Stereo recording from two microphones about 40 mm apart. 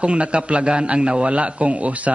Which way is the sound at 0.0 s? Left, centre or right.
Right.